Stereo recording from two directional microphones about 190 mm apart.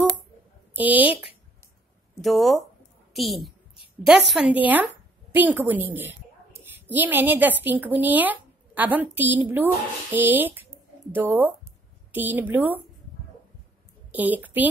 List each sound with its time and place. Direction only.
0.7 s a woman's voice: 10° right (ahead or behind)
2.2 s a woman's voice: centre (ahead or behind)
14.1 s a woman's voice: 10° right (ahead or behind)